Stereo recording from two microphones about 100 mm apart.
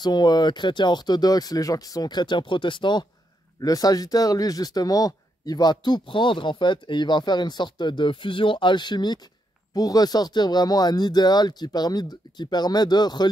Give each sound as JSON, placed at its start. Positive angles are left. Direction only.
{"t": 0.0, "sound": "speech", "side_deg": 45}
{"t": 3.6, "sound": "speech", "side_deg": 40}